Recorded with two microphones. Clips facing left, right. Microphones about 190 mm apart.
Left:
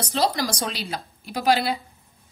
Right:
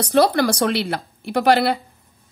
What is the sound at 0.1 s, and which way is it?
A woman's voice, 60° right (ahead or behind).